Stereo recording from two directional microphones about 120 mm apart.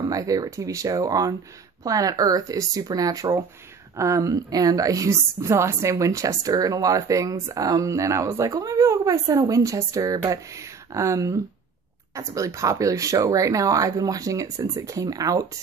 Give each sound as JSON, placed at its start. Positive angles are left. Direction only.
{"t": 0.1, "sound": "a woman's voice", "side_deg": -30}